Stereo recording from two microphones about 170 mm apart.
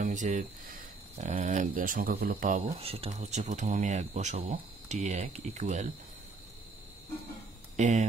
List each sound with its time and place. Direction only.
0.0 s speech: 45° right (ahead or behind)
2.8 s speech: 35° right (ahead or behind)
7.7 s speech: 45° right (ahead or behind)